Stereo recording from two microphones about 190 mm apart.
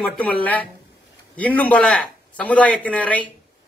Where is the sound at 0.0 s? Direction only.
5° left (ahead or behind).